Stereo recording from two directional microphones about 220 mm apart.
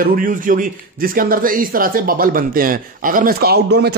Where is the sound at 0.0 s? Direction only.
40° right (ahead or behind).